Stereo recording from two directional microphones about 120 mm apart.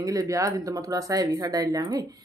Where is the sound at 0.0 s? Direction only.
30° right (ahead or behind).